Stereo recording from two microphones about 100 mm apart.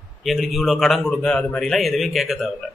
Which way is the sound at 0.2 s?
Centre (ahead or behind).